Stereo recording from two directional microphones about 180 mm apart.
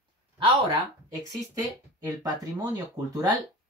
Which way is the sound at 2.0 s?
20° right (ahead or behind).